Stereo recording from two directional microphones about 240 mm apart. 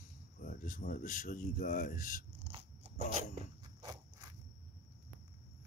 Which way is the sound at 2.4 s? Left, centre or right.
Right.